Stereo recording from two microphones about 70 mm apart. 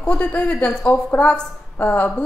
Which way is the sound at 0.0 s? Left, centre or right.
Centre.